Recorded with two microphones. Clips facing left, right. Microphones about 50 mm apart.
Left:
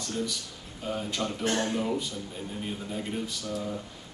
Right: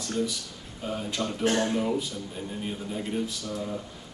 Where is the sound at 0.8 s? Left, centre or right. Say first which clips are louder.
Right 1 dB; centre.